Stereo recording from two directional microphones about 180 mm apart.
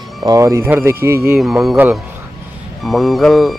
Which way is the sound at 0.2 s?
20° right (ahead or behind).